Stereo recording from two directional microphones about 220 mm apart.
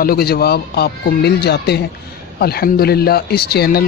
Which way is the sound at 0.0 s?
45° left (ahead or behind).